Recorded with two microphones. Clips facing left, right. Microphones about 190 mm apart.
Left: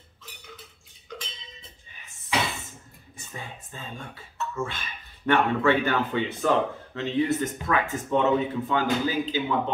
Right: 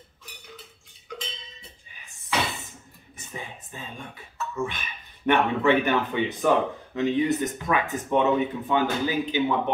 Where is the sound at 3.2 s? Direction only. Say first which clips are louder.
Right 2 dB; 20° right (ahead or behind).